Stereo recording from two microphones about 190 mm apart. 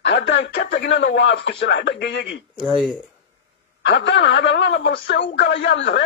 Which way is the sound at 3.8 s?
70° left (ahead or behind).